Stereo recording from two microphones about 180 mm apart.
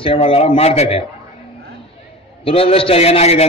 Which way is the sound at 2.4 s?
30° left (ahead or behind).